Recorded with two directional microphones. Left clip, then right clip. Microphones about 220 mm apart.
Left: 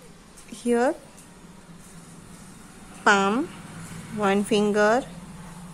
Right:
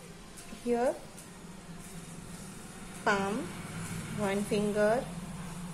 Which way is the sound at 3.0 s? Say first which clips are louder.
Left 10 dB; 35° left (ahead or behind).